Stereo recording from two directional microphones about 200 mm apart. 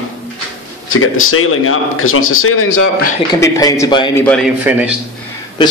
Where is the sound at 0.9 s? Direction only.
90° left.